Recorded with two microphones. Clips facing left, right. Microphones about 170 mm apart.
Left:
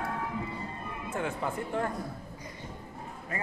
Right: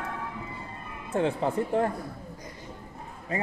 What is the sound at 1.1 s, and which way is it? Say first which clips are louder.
Speech: right 7 dB; 30° right (ahead or behind).